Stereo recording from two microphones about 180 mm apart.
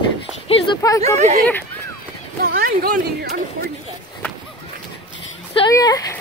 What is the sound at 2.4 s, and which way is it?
Speech, 55° right (ahead or behind).